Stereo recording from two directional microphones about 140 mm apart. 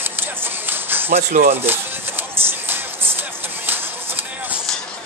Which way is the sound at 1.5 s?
15° right (ahead or behind).